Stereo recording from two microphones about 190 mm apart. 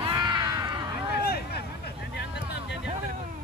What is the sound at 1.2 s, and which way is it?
Vehicle, 55° left (ahead or behind).